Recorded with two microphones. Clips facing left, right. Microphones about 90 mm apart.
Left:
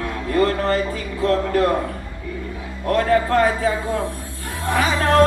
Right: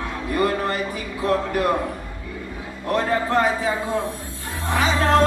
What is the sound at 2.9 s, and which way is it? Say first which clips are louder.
Speech: left 4 dB; 20° right (ahead or behind).